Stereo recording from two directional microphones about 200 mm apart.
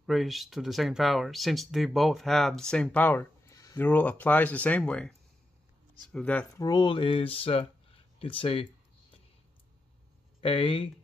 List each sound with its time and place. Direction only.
0.0 s speech: centre (ahead or behind); by 8.6 s 25° left (ahead or behind)
10.4 s speech: 25° left (ahead or behind)